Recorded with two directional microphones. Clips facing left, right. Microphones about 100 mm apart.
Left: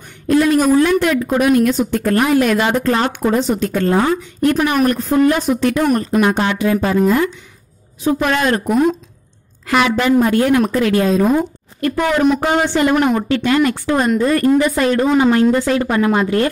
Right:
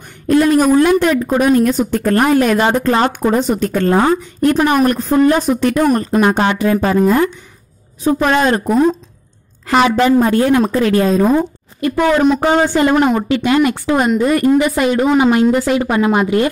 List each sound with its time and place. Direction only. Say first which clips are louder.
0.3 s a woman's voice: right 2 dB; 45° right (ahead or behind)
8.0 s a woman's voice: right 3 dB; 35° right (ahead or behind)
11.9 s speech: right 3 dB; 25° right (ahead or behind)
12.6 s a woman's voice: right 2 dB; 40° right (ahead or behind)
12.9 s speech: right 2 dB; 20° right (ahead or behind)